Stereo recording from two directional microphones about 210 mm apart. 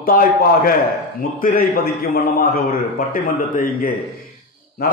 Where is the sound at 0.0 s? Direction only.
45° left (ahead or behind).